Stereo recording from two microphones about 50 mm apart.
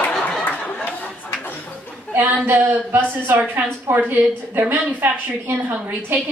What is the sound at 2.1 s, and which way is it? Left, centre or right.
A woman's voice, right.